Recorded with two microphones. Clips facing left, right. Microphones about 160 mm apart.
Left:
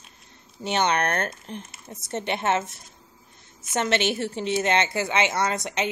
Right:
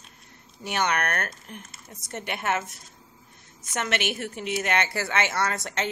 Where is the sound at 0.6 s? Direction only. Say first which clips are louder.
Left 3 dB; 25° left (ahead or behind).